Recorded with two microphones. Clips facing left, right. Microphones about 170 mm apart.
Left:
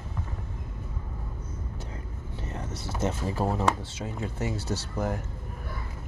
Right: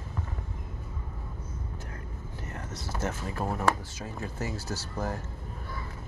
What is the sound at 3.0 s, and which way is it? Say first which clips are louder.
Speech: left 5 dB; 25° left (ahead or behind).